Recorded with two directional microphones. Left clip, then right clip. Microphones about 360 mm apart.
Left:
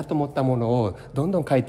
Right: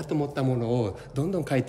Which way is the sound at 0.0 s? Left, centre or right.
Centre.